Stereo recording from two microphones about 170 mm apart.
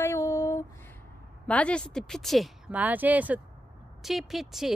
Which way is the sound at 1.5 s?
5° left (ahead or behind).